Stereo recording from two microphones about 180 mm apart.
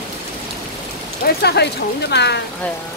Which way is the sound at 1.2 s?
65° left (ahead or behind).